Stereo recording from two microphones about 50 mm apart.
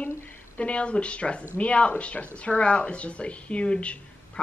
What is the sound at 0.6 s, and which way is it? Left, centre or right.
A woman's voice, left.